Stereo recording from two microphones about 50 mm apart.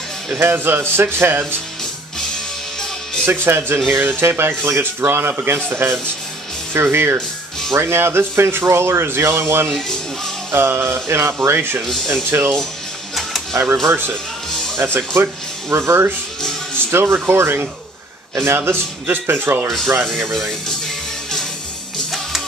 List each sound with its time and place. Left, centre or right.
0.4 s speech: right
3.3 s speech: right
8.6 s speech: right
9.7 s speech: centre
10.5 s speech: right
11.8 s speech: centre
12.3 s speech: right
13.1 s mechanisms: centre
13.8 s a man's voice: right
19.0 s speech: right
20.1 s speech: centre